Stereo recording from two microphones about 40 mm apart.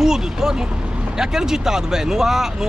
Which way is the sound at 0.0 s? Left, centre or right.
Centre.